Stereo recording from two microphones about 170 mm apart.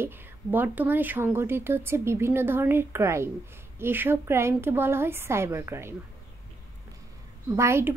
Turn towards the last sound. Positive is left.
turn(degrees=-15)  # may be behind; listen again after turning